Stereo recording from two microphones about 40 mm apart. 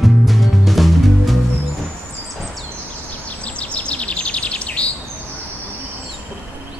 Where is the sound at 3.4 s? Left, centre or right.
Left.